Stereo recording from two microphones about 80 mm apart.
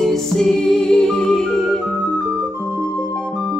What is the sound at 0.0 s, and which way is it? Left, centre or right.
Music, centre.